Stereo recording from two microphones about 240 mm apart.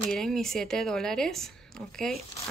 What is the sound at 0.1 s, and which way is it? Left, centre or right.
Speech, centre.